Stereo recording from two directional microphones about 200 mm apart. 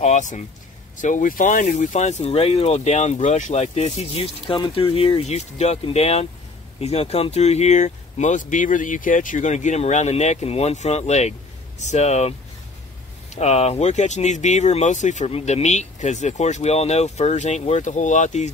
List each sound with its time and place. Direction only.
0.0 s speech: 35° left (ahead or behind)